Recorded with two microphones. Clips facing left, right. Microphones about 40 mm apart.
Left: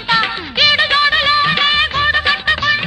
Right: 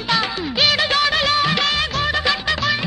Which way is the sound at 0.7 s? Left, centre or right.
Left.